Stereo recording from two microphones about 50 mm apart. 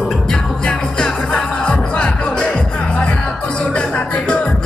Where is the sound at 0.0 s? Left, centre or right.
Centre.